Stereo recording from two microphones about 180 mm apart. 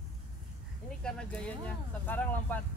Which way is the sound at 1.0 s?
5° left (ahead or behind).